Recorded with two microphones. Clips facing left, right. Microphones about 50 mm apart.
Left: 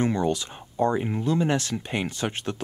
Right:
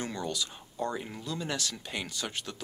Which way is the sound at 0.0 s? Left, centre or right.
Left.